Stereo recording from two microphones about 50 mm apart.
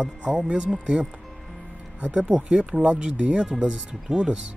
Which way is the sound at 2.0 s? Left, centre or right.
Right.